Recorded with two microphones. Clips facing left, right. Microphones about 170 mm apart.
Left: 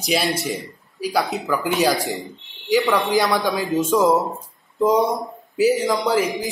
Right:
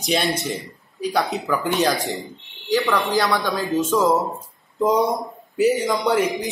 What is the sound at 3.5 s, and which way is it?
Speech, 5° left (ahead or behind).